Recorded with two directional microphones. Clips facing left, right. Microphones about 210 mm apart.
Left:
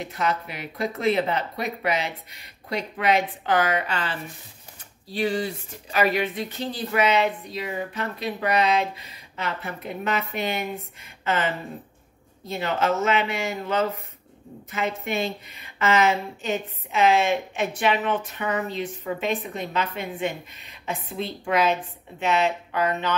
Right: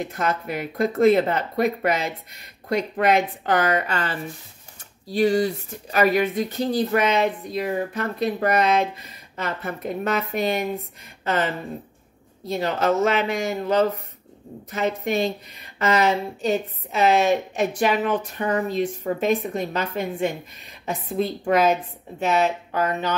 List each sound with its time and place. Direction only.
0.0 s a woman's voice: 50° right (ahead or behind)